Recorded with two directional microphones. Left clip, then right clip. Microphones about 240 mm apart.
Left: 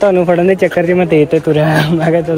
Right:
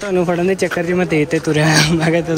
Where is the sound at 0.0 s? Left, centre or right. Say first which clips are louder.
Left 7 dB; centre.